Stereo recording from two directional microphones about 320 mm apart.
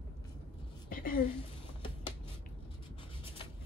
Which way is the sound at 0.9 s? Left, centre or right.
Left.